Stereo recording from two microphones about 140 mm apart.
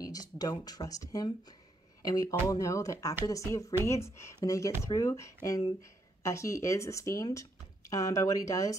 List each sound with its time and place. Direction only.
0.0 s speech: 25° left (ahead or behind)